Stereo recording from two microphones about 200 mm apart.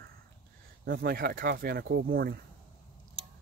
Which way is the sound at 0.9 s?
50° right (ahead or behind).